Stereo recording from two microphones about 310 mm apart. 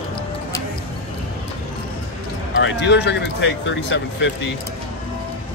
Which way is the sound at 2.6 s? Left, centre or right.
Left.